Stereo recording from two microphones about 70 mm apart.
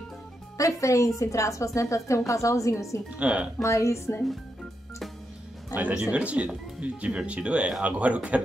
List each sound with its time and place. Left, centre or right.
0.6 s a woman's voice: left
3.2 s speech: centre
3.6 s a woman's voice: left
5.8 s speech: right